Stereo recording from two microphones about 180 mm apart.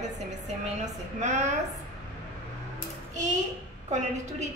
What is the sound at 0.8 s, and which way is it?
Speech, 40° right (ahead or behind).